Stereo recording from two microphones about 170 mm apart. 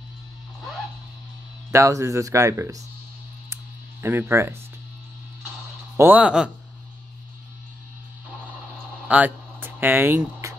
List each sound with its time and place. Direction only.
1.7 s speech: 15° right (ahead or behind)
4.0 s speech: 15° right (ahead or behind)
5.9 s speech: 10° right (ahead or behind)
9.0 s a sound: 10° right (ahead or behind)